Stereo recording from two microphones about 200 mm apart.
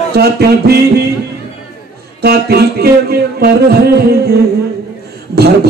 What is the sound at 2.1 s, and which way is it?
A man's voice, 50° right (ahead or behind).